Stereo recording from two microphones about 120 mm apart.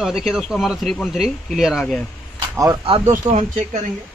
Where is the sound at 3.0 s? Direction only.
90° right.